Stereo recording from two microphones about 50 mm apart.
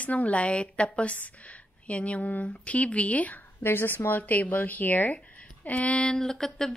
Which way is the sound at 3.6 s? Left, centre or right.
Left.